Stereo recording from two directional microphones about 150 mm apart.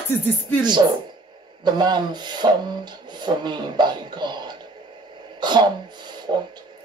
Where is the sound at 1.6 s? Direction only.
30° right (ahead or behind).